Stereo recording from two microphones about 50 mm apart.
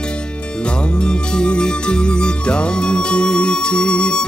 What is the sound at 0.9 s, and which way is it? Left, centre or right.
Music, centre.